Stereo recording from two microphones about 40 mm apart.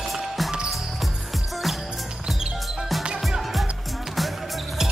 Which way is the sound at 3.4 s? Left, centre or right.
Centre.